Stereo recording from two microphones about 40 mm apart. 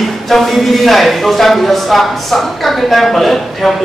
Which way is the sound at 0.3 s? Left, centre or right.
Centre.